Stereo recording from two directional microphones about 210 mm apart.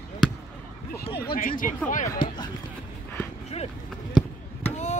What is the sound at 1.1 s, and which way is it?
Speech, 45° left (ahead or behind).